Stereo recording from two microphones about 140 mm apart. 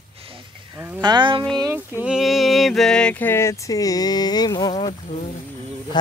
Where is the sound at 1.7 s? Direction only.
5° right (ahead or behind); by 4.9 s 35° left (ahead or behind).